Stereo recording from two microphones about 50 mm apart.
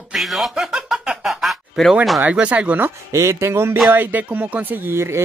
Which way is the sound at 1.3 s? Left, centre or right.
Centre.